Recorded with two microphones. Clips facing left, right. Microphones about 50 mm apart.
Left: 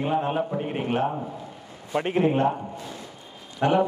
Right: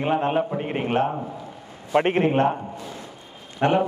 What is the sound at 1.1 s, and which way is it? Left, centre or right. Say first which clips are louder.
Speech: right 2 dB; centre.